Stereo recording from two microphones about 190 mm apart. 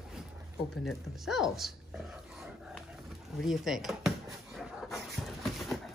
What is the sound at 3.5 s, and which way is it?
Speech, centre (ahead or behind).